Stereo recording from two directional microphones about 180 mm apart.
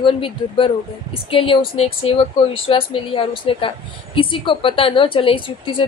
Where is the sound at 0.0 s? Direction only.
30° left (ahead or behind).